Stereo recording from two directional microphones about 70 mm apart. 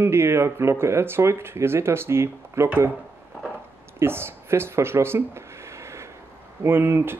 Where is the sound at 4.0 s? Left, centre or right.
Right.